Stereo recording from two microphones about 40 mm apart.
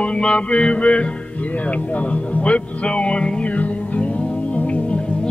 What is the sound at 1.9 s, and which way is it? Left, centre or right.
Speech, left.